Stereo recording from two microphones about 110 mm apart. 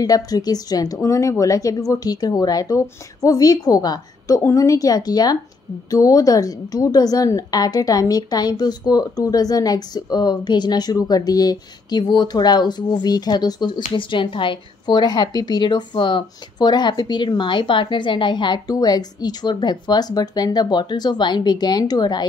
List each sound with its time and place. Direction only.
0.0 s a woman's voice: 35° left (ahead or behind)